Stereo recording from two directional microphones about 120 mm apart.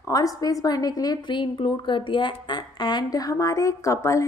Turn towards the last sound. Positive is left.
turn(degrees=25)  # may be behind; listen again after turning